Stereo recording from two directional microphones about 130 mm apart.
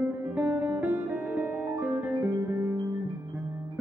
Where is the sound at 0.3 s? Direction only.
10° right (ahead or behind).